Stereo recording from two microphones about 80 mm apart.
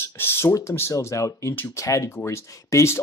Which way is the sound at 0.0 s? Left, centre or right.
Left.